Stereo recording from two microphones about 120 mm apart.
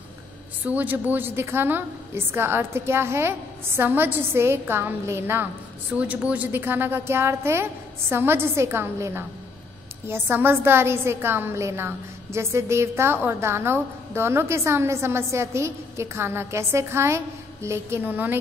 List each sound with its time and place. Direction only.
0.7 s a woman's voice: 15° right (ahead or behind)